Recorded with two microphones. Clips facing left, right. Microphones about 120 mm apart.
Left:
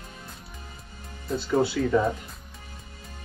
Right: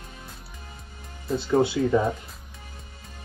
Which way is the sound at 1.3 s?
Centre (ahead or behind).